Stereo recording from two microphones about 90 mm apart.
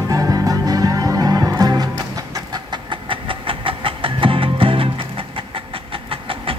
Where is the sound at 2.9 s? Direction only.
75° right (ahead or behind).